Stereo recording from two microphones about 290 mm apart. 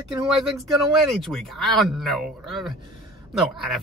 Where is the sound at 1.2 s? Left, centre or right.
Centre.